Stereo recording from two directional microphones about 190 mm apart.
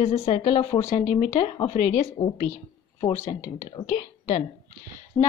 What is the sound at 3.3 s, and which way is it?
Speech, 40° left (ahead or behind).